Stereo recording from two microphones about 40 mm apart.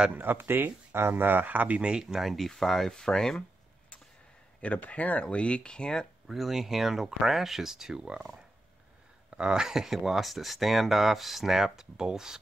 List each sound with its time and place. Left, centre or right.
0.1 s speech: right
1.8 s speech: right
2.1 s speech: centre
4.6 s speech: left
6.2 s speech: centre
9.4 s speech: centre